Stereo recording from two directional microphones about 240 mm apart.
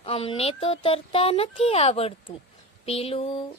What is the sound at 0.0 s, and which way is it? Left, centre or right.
Speech, left.